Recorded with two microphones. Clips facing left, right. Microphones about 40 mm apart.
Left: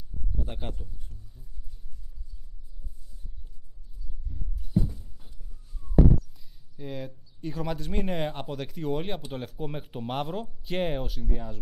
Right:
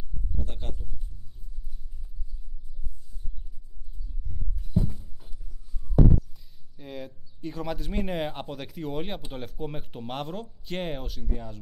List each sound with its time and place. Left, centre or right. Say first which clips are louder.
0.5 s speech: left 3 dB; centre
4.8 s a sound: right 2 dB; centre
6.3 s speech: left 3 dB; centre